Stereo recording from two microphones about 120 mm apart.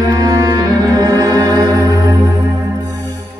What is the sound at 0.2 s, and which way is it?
Music, 30° right (ahead or behind).